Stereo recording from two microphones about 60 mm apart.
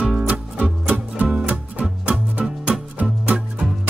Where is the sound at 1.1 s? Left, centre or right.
Right.